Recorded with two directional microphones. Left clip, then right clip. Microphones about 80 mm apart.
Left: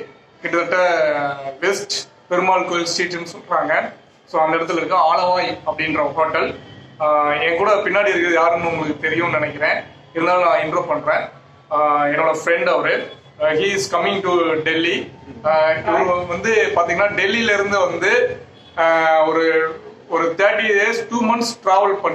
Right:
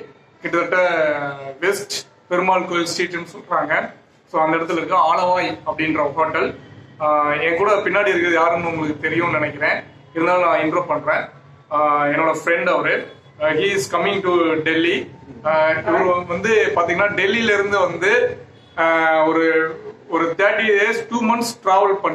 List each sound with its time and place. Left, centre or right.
0.4 s a man's voice: centre
0.9 s speech: left
1.6 s a man's voice: centre
10.3 s a man's voice: centre
14.6 s a man's voice: centre